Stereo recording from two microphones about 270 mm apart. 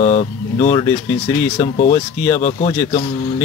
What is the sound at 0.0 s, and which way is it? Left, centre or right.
Speech, left.